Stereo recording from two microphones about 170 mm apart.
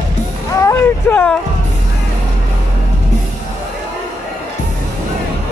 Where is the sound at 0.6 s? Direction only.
15° left (ahead or behind).